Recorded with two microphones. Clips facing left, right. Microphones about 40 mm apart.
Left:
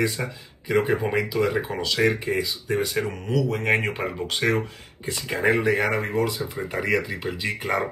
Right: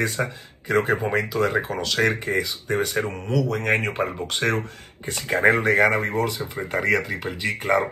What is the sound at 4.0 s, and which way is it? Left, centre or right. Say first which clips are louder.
Speech: right 3 dB; centre.